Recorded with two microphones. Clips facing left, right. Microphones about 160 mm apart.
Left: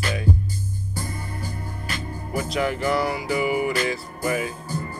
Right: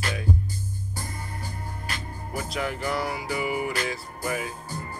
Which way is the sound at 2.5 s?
75° left (ahead or behind).